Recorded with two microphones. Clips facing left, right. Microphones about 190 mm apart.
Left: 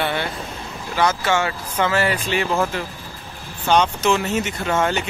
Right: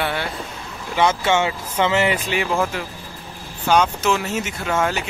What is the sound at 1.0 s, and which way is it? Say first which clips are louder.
Speech: right 2 dB; 25° right (ahead or behind).